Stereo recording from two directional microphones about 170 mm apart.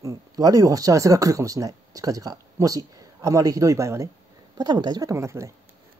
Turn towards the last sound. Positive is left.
turn(degrees=-15)  # may be behind; listen again after turning